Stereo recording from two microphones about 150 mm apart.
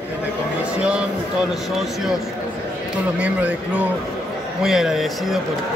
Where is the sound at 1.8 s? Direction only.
Centre (ahead or behind).